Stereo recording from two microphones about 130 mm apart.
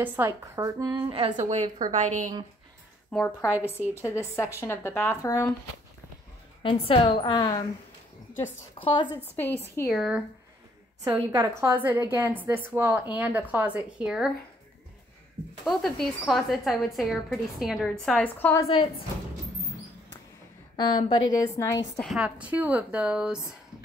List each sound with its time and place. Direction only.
0.0 s a woman's voice: 20° right (ahead or behind); by 1.3 s 45° right (ahead or behind)
1.3 s a woman's voice: 60° right (ahead or behind)
1.9 s a woman's voice: 70° right (ahead or behind)
3.1 s a woman's voice: 10° left (ahead or behind)
6.6 s a woman's voice: 45° left (ahead or behind)
9.0 s a woman's voice: 15° right (ahead or behind)
9.9 s a woman's voice: centre (ahead or behind)
11.1 s a woman's voice: 25° right (ahead or behind)
11.7 s a woman's voice: 15° right (ahead or behind)
15.6 s a woman's voice: centre (ahead or behind)
18.2 s a woman's voice: 15° left (ahead or behind)
20.7 s a woman's voice: 35° left (ahead or behind)
21.5 s speech: 25° left (ahead or behind)
22.0 s a woman's voice: 5° right (ahead or behind)